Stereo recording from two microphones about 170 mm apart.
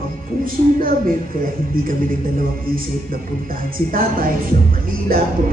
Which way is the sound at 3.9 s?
55° right (ahead or behind).